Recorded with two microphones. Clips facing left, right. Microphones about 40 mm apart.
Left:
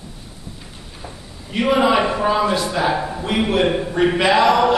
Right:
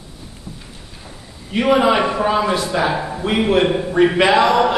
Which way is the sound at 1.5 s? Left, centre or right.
Centre.